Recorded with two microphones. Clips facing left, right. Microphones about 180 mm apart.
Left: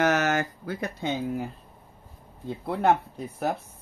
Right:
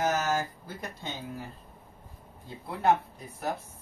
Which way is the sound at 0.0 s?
75° left (ahead or behind).